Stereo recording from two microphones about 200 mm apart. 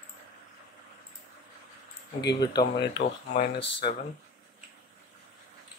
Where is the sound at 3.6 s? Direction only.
25° left (ahead or behind).